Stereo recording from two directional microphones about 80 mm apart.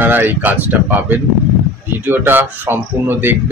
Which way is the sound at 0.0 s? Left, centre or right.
Right.